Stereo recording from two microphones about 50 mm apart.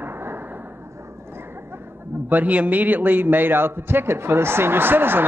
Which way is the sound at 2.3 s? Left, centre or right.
Right.